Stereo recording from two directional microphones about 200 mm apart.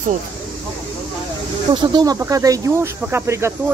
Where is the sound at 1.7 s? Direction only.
20° right (ahead or behind).